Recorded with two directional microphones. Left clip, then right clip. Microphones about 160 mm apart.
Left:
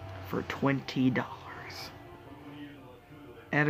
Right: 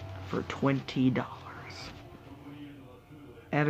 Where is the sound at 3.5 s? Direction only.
15° left (ahead or behind).